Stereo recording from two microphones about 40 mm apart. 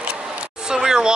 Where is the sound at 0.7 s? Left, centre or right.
Centre.